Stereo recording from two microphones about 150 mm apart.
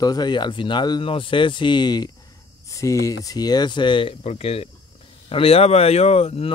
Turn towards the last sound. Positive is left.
turn(degrees=45)  # may be behind; listen again after turning